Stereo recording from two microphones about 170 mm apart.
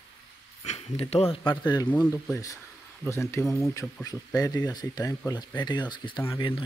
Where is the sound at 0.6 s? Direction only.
40° left (ahead or behind).